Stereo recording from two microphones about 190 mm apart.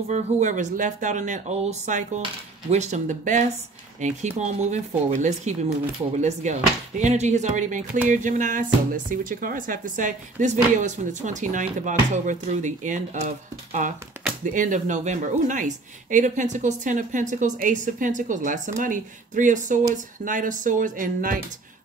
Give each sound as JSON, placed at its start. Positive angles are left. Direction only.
{"t": 0.1, "sound": "speech", "side_deg": -40}
{"t": 14.4, "sound": "speech", "side_deg": -40}